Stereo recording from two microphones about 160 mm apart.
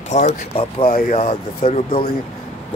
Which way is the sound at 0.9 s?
60° left (ahead or behind).